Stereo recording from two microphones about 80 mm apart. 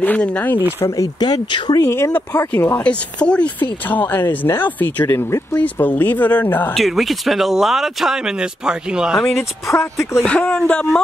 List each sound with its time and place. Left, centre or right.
0.0 s speech: centre
0.7 s speech: left
1.2 s speech: left
1.8 s speech: left
2.8 s speech: centre
5.1 s speech: left
5.6 s speech: left
6.7 s speech: centre
9.4 s speech: left
10.2 s speech: centre